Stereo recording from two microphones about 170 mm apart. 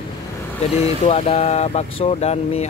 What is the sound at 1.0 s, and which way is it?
Speech, 35° left (ahead or behind).